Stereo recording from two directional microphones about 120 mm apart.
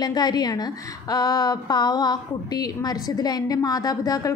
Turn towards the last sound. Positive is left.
turn(degrees=30)  # may be behind; listen again after turning